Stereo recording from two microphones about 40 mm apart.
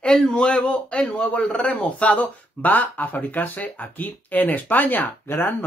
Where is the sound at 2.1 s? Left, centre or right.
Left.